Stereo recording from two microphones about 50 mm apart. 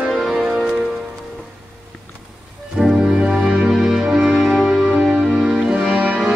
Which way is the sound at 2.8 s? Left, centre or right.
Centre.